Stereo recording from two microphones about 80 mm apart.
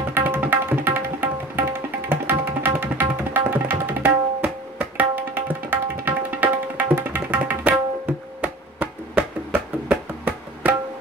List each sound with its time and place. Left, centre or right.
0.1 s tabla: right
8.4 s music: centre